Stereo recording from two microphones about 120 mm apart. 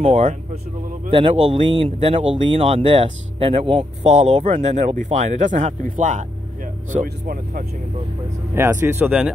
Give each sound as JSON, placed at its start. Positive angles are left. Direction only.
{"t": 0.0, "sound": "speech", "side_deg": -55}
{"t": 4.6, "sound": "speech", "side_deg": -75}
{"t": 6.9, "sound": "speech", "side_deg": -65}
{"t": 8.5, "sound": "speech", "side_deg": -20}